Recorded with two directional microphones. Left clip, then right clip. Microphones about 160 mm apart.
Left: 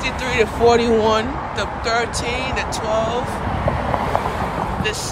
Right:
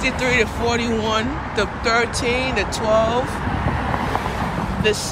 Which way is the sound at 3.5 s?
75° left (ahead or behind).